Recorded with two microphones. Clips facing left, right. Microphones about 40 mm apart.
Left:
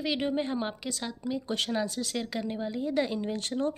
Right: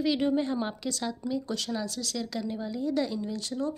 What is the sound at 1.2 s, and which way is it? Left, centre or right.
A woman's voice, left.